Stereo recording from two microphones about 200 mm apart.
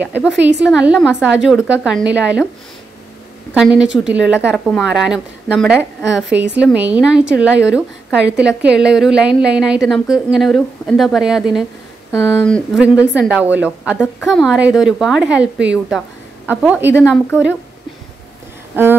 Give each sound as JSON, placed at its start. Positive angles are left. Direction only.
{"t": 0.0, "sound": "a woman's voice", "side_deg": -10}
{"t": 3.5, "sound": "a woman's voice", "side_deg": -5}
{"t": 12.1, "sound": "speech", "side_deg": 10}
{"t": 12.8, "sound": "a woman's voice", "side_deg": -5}
{"t": 18.8, "sound": "a woman's voice", "side_deg": -10}